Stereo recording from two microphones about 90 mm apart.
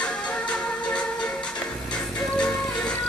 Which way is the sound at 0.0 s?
10° left (ahead or behind).